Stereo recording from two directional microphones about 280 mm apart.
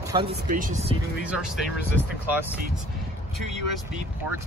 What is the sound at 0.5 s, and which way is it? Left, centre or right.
Speech, right.